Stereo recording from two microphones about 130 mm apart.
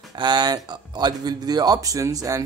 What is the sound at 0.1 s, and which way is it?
Speech, 35° right (ahead or behind).